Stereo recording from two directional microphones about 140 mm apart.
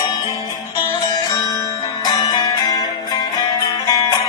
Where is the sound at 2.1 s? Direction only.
30° left (ahead or behind).